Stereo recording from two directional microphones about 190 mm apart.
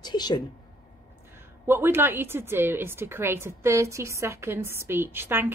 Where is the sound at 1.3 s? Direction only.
10° right (ahead or behind).